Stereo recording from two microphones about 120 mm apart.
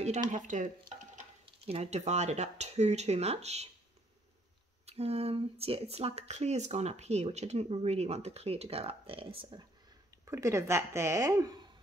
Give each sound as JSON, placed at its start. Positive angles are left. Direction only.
{"t": 0.3, "sound": "speech", "side_deg": -90}
{"t": 1.4, "sound": "speech", "side_deg": -60}
{"t": 4.8, "sound": "speech", "side_deg": -60}
{"t": 10.2, "sound": "speech", "side_deg": -25}